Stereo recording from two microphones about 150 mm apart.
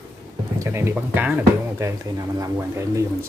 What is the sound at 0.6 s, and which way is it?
Speech, 15° right (ahead or behind).